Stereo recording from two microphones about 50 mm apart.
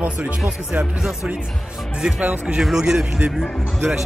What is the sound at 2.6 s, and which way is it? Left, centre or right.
Speech, centre.